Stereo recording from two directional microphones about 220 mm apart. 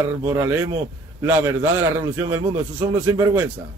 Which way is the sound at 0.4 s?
10° right (ahead or behind).